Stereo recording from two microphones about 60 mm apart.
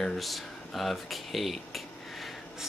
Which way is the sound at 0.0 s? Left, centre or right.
Centre.